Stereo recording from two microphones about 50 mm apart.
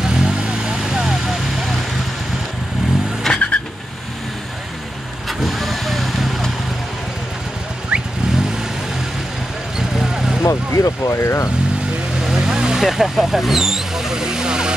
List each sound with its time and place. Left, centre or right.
0.0 s vehicle: centre
3.3 s vehicle: centre
5.4 s vehicle: centre
7.9 s vehicle: right
9.8 s vehicle: centre
10.4 s speech: left
12.2 s vehicle: centre
12.8 s vehicle: centre